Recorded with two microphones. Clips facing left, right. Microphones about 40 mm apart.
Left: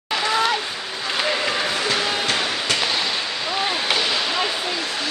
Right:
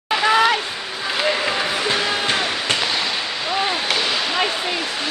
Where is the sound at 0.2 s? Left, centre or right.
Right.